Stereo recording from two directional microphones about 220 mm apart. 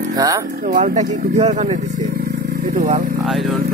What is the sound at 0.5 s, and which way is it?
Speech, 40° right (ahead or behind).